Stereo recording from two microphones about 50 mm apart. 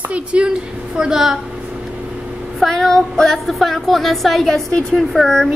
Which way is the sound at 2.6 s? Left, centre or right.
Centre.